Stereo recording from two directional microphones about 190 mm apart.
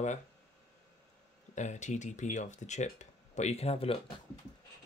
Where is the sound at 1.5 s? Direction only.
40° left (ahead or behind).